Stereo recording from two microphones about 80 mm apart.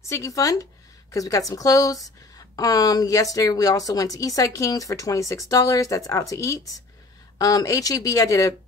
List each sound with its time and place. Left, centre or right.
0.1 s speech: left